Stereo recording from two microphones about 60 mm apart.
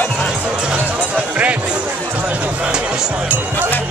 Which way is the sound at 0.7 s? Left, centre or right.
Right.